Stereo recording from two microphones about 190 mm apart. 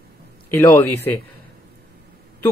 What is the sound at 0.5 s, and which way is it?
Speech, 10° left (ahead or behind).